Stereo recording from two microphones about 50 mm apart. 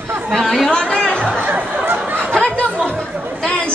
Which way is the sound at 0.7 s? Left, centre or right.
Centre.